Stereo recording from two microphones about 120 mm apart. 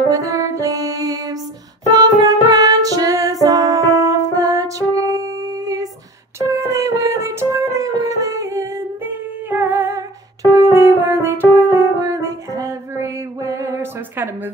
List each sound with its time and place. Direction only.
0.1 s music: 25° right (ahead or behind)